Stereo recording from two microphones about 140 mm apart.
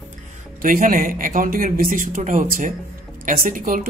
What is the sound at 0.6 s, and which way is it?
Speech, 75° right (ahead or behind).